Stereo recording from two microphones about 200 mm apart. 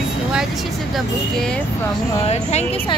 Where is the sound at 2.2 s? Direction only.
30° left (ahead or behind).